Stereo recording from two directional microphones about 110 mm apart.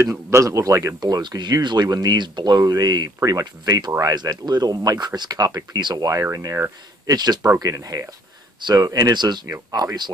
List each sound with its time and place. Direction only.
0.0 s speech: 25° right (ahead or behind)